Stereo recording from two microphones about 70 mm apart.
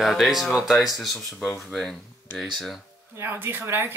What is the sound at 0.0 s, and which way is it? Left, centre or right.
Speech, centre.